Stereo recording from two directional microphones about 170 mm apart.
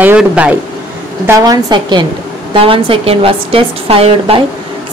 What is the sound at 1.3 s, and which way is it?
A woman's voice, 20° right (ahead or behind).